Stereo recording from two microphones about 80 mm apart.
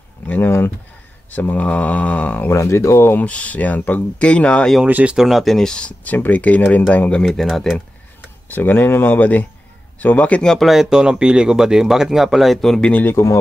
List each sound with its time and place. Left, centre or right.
0.3 s a sound: left
1.3 s speech: centre
2.5 s speech: left
3.2 s speech: centre
4.8 s speech: right
5.1 s speech: centre
7.2 s speech: centre
8.5 s speech: left